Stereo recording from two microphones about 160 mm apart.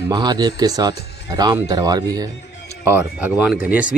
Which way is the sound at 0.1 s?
25° right (ahead or behind).